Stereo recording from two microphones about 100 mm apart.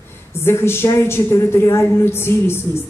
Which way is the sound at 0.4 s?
25° left (ahead or behind).